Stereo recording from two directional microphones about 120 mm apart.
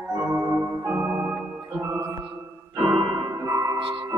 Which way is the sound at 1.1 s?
5° right (ahead or behind).